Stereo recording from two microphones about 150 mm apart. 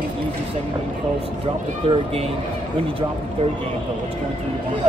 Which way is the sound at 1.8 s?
40° right (ahead or behind).